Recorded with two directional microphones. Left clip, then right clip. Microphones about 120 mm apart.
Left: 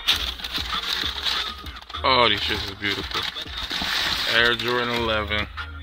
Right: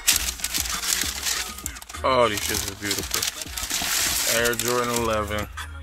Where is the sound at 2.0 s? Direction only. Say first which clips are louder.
Left 2 dB; centre (ahead or behind).